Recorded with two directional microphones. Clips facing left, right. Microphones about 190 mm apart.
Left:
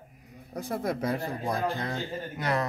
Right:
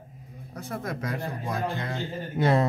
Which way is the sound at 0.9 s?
35° left (ahead or behind).